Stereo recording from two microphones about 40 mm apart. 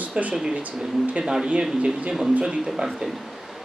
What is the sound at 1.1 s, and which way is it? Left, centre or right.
A man's voice, centre.